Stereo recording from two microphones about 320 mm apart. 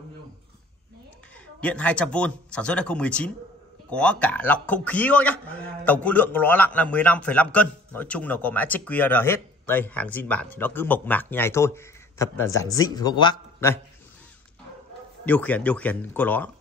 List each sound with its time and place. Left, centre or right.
1.6 s a man's voice: centre
15.2 s a man's voice: centre